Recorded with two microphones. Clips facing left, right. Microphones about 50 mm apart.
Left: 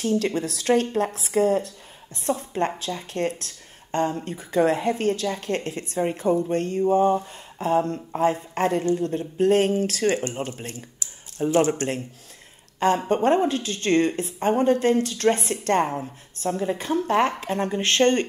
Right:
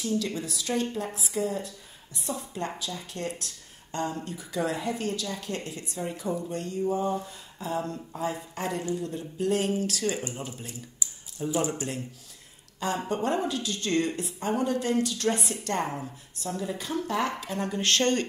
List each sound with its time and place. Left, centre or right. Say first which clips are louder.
0.0 s speech: left 6 dB; left
12.7 s a woman's voice: left 8 dB; left